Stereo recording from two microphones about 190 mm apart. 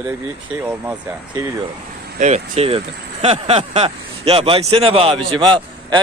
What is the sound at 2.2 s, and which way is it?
Speech, 40° right (ahead or behind).